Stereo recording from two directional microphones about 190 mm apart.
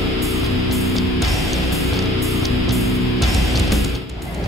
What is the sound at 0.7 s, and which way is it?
Music, centre (ahead or behind).